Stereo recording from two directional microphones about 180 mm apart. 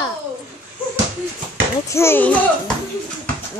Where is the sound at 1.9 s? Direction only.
15° left (ahead or behind).